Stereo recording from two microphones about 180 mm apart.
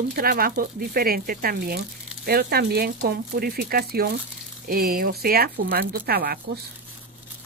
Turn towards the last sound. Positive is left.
turn(degrees=-55)  # may be behind; listen again after turning